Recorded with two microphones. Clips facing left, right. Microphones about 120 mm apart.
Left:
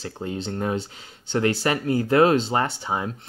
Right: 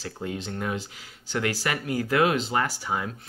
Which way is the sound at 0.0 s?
30° left (ahead or behind).